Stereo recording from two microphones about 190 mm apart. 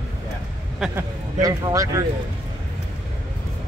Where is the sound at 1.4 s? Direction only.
20° right (ahead or behind).